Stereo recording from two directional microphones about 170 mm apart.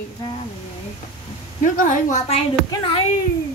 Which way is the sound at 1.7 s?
50° left (ahead or behind).